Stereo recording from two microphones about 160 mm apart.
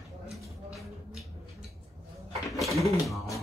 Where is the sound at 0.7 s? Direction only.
Centre (ahead or behind).